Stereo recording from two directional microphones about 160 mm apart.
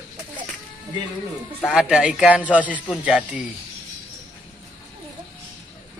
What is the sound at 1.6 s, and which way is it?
Speech, 5° right (ahead or behind).